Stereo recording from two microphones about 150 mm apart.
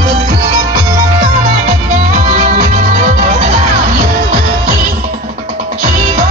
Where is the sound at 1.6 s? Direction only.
55° right (ahead or behind).